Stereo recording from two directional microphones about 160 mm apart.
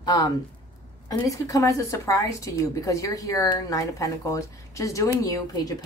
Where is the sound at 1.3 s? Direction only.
20° left (ahead or behind).